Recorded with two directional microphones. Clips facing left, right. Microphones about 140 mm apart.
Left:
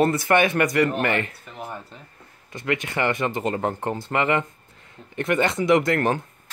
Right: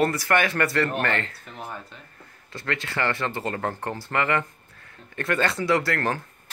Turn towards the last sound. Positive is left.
turn(degrees=20)  # may be behind; listen again after turning